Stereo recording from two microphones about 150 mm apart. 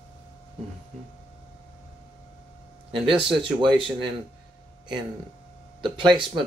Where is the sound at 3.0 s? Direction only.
35° right (ahead or behind).